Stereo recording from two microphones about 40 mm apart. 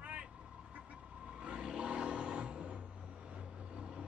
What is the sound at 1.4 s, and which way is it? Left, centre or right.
Vehicle, right.